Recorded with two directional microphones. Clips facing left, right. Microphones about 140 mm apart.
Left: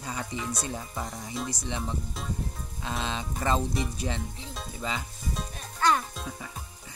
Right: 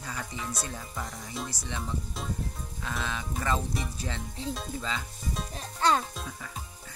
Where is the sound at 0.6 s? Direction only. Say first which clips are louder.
Left 3 dB; 20° left (ahead or behind).